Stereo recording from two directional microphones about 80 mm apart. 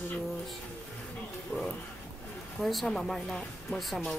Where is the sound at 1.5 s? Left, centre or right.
Left.